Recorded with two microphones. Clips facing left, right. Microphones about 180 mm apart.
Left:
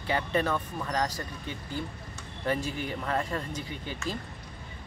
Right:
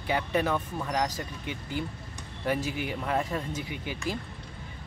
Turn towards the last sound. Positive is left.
turn(degrees=-15)  # may be behind; listen again after turning